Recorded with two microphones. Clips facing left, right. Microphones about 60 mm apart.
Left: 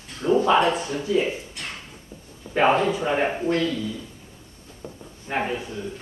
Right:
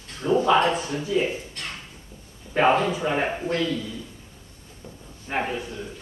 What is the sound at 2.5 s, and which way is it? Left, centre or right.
A man's voice, centre.